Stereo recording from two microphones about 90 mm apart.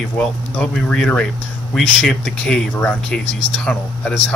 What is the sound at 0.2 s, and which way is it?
Speech, 10° left (ahead or behind).